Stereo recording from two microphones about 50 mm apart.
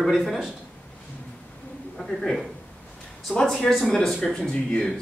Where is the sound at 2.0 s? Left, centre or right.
Centre.